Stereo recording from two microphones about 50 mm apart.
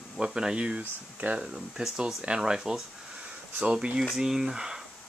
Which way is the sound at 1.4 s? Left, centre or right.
Centre.